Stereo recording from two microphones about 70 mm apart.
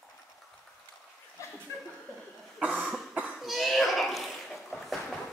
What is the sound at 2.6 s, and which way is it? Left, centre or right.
Cough, centre.